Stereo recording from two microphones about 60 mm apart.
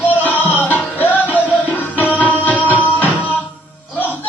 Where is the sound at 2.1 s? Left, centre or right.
Left.